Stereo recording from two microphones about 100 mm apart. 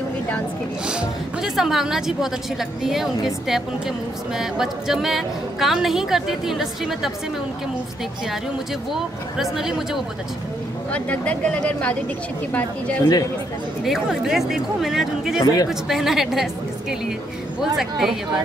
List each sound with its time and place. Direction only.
0.8 s a woman's voice: 5° right (ahead or behind)
4.4 s a woman's voice: 5° right (ahead or behind)
8.9 s a woman's voice: 5° right (ahead or behind)
10.9 s speech: 15° left (ahead or behind)
13.8 s a woman's voice: 5° right (ahead or behind)
15.4 s speech: 40° left (ahead or behind)
15.7 s a woman's voice: 5° right (ahead or behind)
17.7 s a woman's voice: 5° right (ahead or behind)